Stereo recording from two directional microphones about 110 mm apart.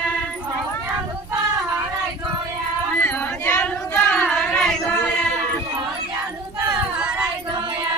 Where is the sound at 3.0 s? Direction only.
15° left (ahead or behind).